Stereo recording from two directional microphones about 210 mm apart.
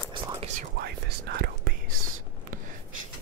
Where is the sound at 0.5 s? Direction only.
50° right (ahead or behind).